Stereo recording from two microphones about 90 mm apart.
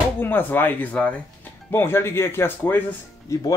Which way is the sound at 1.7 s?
25° left (ahead or behind).